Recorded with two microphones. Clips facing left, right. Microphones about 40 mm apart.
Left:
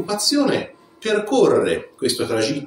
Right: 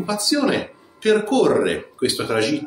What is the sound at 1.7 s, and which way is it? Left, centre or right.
Speech, right.